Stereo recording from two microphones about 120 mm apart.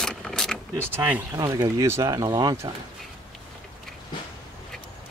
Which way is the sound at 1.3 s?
30° right (ahead or behind).